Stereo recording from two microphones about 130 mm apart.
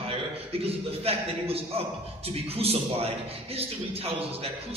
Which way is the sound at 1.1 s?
50° right (ahead or behind).